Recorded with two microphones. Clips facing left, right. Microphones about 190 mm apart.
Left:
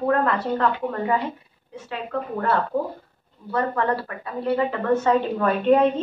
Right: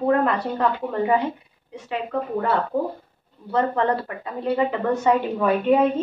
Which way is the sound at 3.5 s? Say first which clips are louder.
Right 2 dB; 20° right (ahead or behind).